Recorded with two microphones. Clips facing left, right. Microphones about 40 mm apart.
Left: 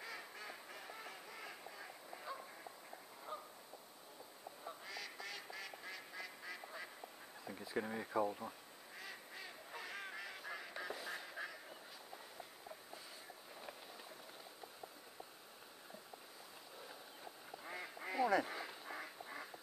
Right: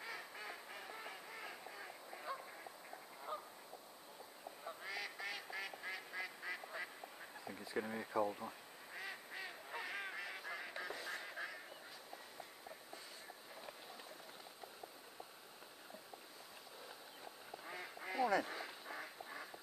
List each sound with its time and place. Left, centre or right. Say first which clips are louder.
0.0 s duck: right 1 dB; centre
3.3 s goose: right 2 dB; centre
4.6 s duck: right 3 dB; centre
7.4 s speech: left 1 dB; centre
8.3 s duck: even; centre
17.6 s quack: left 1 dB; centre